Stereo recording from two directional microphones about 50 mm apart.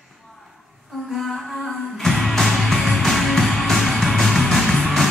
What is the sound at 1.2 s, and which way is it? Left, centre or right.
Music, centre.